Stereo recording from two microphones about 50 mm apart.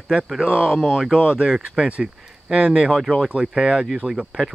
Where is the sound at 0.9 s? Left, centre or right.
Centre.